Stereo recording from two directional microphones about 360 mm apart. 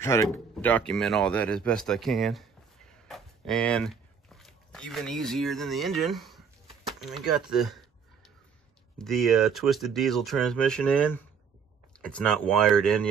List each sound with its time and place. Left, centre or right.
0.0 s speech: centre